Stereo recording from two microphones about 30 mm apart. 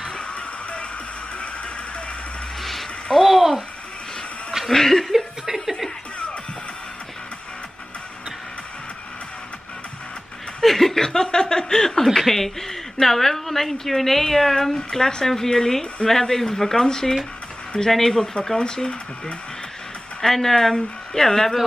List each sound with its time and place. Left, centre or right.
0.2 s music: left
3.2 s a sound: centre
4.6 s chuckle: centre
5.0 s chuckle: centre
10.6 s speech: centre
11.2 s chuckle: left
12.1 s a woman's voice: centre
14.5 s chuckle: centre
15.2 s a woman's voice: centre
17.7 s chuckle: centre
20.2 s a woman's voice: centre